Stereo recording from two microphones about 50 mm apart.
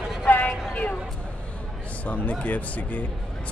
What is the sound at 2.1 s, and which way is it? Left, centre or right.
Speech, left.